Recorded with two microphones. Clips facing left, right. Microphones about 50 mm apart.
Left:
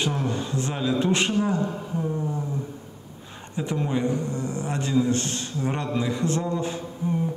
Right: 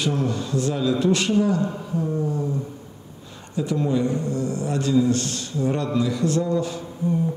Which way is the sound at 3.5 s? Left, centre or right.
Left.